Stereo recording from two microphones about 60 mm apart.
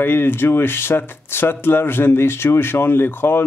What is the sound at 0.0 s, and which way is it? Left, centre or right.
Speech, left.